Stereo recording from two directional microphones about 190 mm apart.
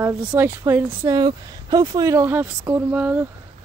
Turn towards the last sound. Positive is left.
turn(degrees=-10)  # may be behind; listen again after turning